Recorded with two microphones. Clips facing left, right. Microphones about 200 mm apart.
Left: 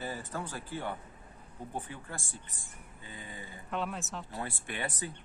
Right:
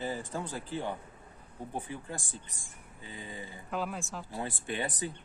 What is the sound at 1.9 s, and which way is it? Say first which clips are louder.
Speech: right 3 dB; 15° right (ahead or behind).